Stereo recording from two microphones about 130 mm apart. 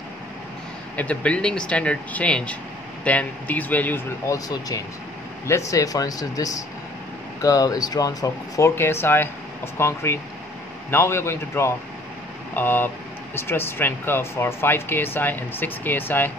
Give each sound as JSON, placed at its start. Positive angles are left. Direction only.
{"t": 0.9, "sound": "speech", "side_deg": 10}
{"t": 4.3, "sound": "speech", "side_deg": 25}